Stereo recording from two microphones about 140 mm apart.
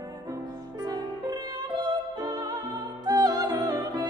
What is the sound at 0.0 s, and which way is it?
Music, 25° right (ahead or behind).